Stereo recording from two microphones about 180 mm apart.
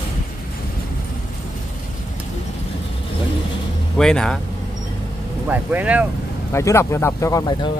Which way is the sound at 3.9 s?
5° left (ahead or behind).